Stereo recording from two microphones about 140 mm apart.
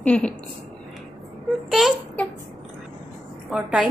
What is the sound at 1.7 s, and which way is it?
Speech, centre (ahead or behind).